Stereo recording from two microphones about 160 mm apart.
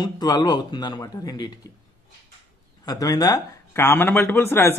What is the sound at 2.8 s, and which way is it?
Speech, 20° left (ahead or behind).